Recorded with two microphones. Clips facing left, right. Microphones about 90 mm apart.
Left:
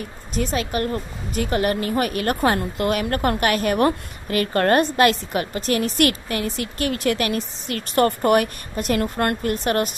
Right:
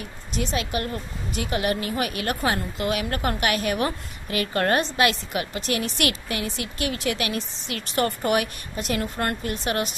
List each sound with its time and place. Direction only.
0.3 s speech: 45° left (ahead or behind)